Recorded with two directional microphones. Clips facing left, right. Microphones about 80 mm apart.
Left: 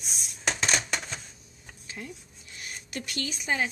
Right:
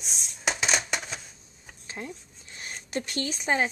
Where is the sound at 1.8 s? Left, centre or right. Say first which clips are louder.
Right 3 dB; right.